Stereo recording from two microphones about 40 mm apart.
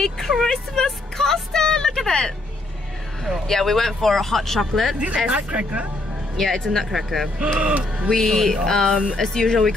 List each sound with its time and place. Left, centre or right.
0.3 s speech: centre
0.8 s music: centre
3.4 s speech: centre
4.9 s speech: right
6.3 s speech: centre
7.6 s speech: right
8.1 s speech: centre